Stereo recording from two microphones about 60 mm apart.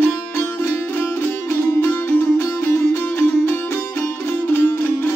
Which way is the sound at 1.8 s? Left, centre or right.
Left.